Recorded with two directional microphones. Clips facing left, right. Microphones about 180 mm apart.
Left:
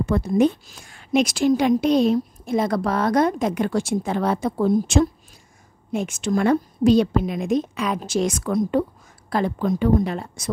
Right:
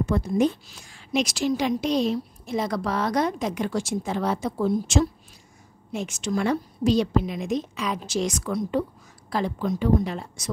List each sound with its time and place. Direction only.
0.0 s a woman's voice: 60° left (ahead or behind)